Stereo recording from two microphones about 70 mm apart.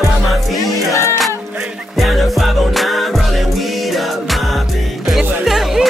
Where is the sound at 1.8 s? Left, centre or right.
Centre.